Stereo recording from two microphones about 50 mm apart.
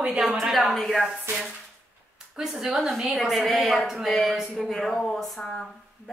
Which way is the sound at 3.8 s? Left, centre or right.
Centre.